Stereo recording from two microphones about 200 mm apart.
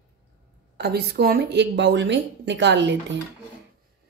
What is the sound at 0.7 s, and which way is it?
Speech, 55° right (ahead or behind).